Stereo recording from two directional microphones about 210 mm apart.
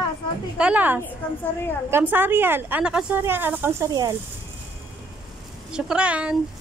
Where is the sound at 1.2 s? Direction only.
10° left (ahead or behind).